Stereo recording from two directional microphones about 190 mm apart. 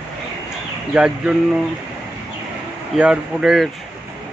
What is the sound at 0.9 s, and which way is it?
Speech, 5° right (ahead or behind).